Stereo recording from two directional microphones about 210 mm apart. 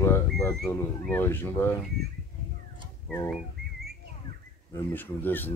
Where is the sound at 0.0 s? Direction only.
15° left (ahead or behind).